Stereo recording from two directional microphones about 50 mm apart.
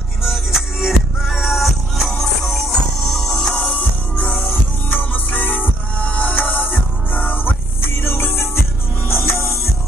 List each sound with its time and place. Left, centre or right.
0.2 s music: centre
3.1 s music: centre
3.7 s music: left
4.4 s music: left